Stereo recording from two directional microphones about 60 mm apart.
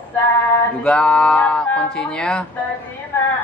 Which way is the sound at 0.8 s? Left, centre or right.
Centre.